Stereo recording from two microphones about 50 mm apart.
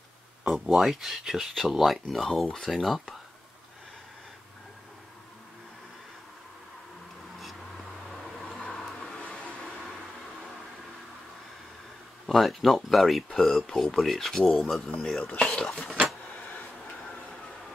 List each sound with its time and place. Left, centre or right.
0.5 s speech: centre
7.3 s a sound: centre
12.3 s speech: centre
15.1 s speech: centre
15.4 s speech: centre